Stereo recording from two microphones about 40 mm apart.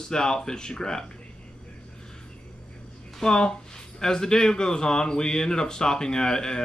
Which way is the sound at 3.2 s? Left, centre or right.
Centre.